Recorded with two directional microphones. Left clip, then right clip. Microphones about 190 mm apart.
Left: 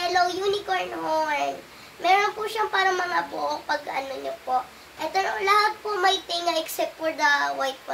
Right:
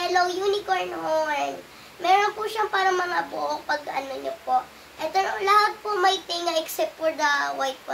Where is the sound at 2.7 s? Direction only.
15° right (ahead or behind).